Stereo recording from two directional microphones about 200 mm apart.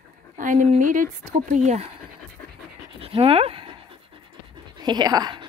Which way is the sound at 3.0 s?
30° right (ahead or behind).